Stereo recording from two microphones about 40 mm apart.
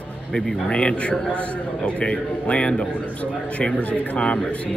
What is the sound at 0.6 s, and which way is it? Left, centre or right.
A man's voice, left.